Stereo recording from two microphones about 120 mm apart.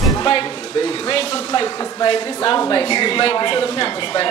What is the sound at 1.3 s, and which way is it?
Speech, 35° left (ahead or behind).